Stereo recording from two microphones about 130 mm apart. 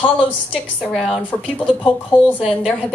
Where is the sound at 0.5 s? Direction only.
Centre (ahead or behind).